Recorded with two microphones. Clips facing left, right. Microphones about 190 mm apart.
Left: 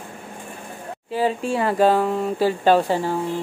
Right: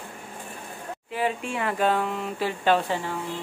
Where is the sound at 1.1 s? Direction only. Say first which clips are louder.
Left 6 dB; 35° left (ahead or behind).